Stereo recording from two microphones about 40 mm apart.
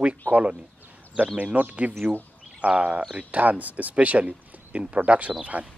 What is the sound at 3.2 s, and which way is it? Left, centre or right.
Speech, right.